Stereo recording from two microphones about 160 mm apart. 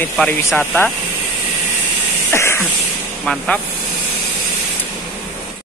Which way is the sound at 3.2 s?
5° left (ahead or behind).